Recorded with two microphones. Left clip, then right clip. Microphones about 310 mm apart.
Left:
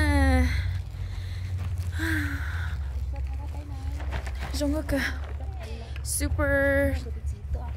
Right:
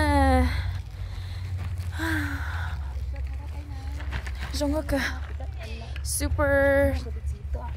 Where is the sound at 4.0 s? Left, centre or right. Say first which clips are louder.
Even; centre.